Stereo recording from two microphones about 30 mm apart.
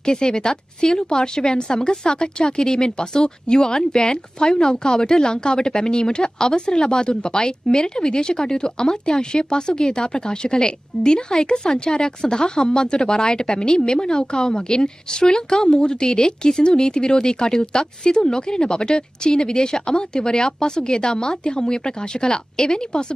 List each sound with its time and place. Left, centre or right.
0.0 s speech: left